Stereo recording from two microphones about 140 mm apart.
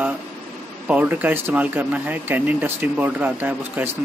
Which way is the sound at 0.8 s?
10° right (ahead or behind).